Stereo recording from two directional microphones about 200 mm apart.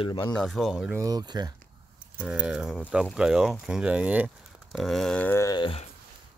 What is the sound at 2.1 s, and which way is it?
Speech, 5° right (ahead or behind).